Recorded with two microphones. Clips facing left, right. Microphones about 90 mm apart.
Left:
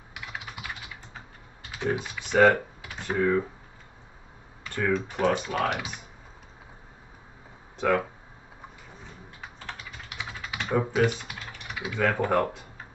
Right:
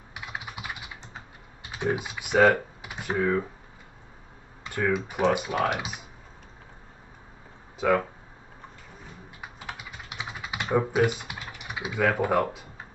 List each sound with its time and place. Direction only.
0.1 s typing: 20° right (ahead or behind)
1.9 s speech: 15° right (ahead or behind)
2.8 s computer keyboard: 15° right (ahead or behind)
4.6 s speech: 10° right (ahead or behind)
7.8 s speech: centre (ahead or behind)
9.4 s typing: 10° right (ahead or behind)
12.0 s speech: 5° right (ahead or behind)